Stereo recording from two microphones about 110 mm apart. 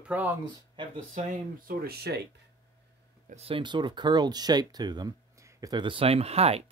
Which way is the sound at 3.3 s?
55° right (ahead or behind).